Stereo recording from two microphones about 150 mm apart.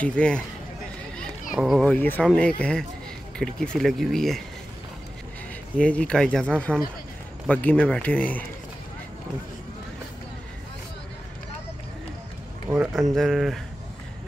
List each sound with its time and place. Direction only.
0.0 s speech: 5° left (ahead or behind)
1.5 s speech: centre (ahead or behind)
2.0 s speech: 10° left (ahead or behind)
5.8 s speech: 5° left (ahead or behind)
12.6 s speech: 10° right (ahead or behind)